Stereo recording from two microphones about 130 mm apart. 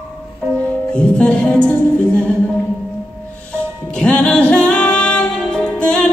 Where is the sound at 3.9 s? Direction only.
5° left (ahead or behind).